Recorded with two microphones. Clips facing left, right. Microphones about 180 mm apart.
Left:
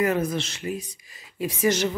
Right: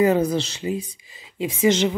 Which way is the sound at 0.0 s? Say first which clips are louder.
Right 5 dB; 30° right (ahead or behind).